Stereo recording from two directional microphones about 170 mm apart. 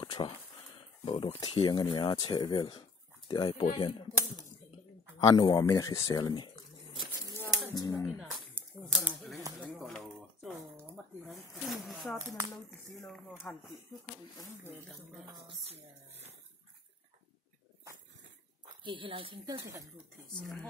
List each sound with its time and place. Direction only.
0.0 s a sound: 30° left (ahead or behind)
1.0 s speech: 35° left (ahead or behind)
5.2 s speech: 20° left (ahead or behind)
7.2 s a sound: 15° left (ahead or behind)
7.7 s speech: 25° left (ahead or behind)
8.3 s a sound: 10° right (ahead or behind)
11.2 s speech: centre (ahead or behind)
15.2 s speech: 30° right (ahead or behind)
18.7 s a woman's voice: 30° right (ahead or behind)
20.3 s speech: 5° left (ahead or behind)